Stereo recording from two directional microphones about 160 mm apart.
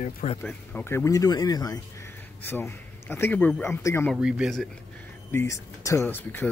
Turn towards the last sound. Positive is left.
turn(degrees=15)  # may be behind; listen again after turning